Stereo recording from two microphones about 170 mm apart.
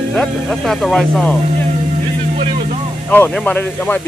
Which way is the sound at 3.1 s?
10° left (ahead or behind).